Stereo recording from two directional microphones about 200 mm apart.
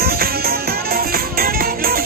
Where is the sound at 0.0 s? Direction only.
50° right (ahead or behind).